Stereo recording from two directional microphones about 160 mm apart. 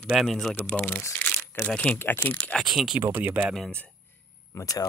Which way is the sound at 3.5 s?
5° left (ahead or behind).